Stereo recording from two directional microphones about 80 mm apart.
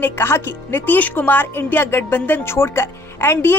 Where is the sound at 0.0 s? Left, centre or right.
Left.